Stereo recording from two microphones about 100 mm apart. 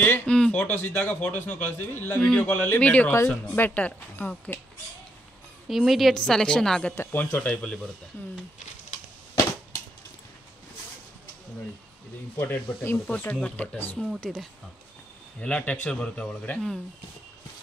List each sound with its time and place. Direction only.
0.0 s a sound: 15° left (ahead or behind)
0.6 s a man's voice: 15° left (ahead or behind)
5.7 s a woman's voice: centre (ahead or behind)
7.0 s a man's voice: 20° left (ahead or behind)
12.4 s a man's voice: 15° left (ahead or behind)
14.2 s a woman's voice: 5° left (ahead or behind)